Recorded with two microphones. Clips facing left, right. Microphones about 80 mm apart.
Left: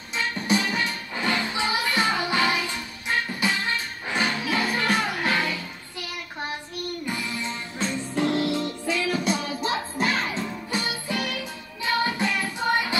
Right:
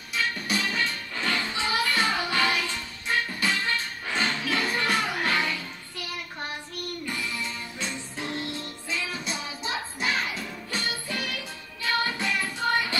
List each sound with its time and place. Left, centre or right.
0.1 s music: left
7.1 s music: centre
8.2 s music: left
10.7 s music: centre